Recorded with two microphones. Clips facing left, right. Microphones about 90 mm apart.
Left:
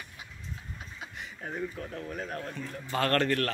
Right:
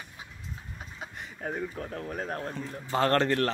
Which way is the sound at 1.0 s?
40° right (ahead or behind).